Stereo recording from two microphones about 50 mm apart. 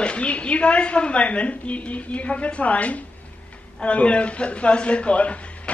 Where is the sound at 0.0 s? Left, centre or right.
Left.